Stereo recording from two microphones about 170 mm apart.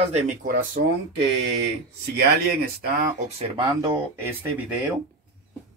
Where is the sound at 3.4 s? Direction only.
25° right (ahead or behind).